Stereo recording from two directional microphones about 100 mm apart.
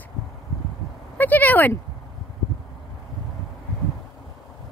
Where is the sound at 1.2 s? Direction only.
15° left (ahead or behind).